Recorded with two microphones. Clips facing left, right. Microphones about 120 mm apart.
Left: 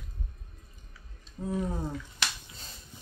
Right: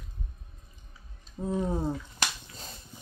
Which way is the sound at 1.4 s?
25° right (ahead or behind).